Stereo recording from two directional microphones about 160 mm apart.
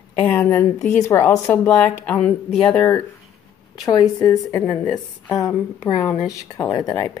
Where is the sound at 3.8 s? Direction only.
25° left (ahead or behind).